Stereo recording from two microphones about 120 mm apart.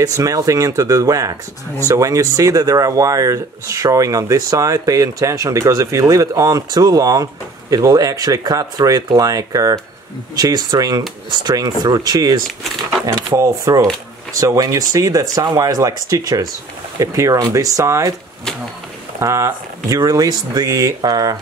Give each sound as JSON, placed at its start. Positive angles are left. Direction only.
{"t": 0.0, "sound": "speech", "side_deg": -30}
{"t": 19.1, "sound": "speech", "side_deg": -25}